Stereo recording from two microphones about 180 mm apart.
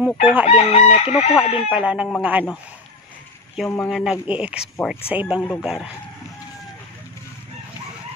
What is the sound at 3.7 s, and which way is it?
Speech, 5° left (ahead or behind).